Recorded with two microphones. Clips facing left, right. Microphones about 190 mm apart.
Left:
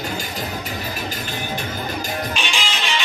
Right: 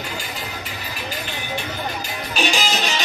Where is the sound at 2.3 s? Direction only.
40° right (ahead or behind).